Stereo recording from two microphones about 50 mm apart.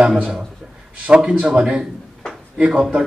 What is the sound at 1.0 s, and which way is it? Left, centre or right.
Speech, right.